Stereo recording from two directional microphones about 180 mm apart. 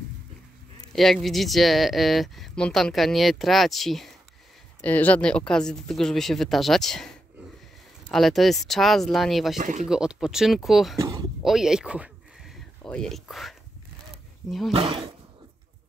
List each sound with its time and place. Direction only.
0.9 s speech: centre (ahead or behind)
9.6 s speech: 45° right (ahead or behind)
9.8 s speech: 5° right (ahead or behind)
11.0 s a sound: 20° right (ahead or behind)
11.4 s a sound: centre (ahead or behind)
12.8 s speech: 5° left (ahead or behind)
14.7 s speech: 35° right (ahead or behind)